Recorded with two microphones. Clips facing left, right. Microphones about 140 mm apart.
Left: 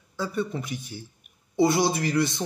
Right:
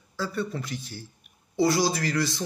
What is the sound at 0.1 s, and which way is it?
A man's voice, 20° left (ahead or behind).